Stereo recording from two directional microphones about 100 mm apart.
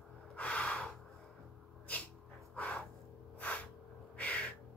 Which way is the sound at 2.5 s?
15° left (ahead or behind).